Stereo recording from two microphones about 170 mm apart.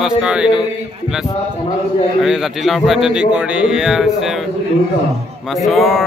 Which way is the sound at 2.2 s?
Centre (ahead or behind).